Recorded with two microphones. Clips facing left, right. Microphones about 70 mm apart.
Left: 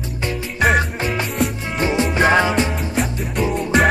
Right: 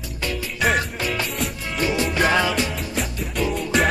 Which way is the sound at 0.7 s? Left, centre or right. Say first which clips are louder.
Left 4 dB; left.